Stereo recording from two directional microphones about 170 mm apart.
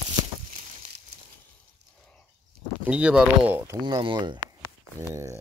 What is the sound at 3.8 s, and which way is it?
Speech, 25° right (ahead or behind).